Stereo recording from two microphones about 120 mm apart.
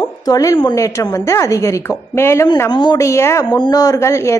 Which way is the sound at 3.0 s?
25° left (ahead or behind).